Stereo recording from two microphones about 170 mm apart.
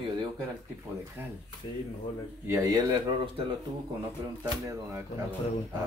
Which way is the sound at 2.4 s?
15° right (ahead or behind).